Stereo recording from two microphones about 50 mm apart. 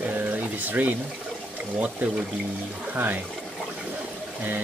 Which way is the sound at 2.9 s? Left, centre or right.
Right.